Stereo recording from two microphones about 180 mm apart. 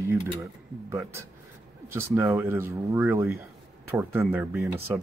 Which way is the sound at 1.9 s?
15° right (ahead or behind).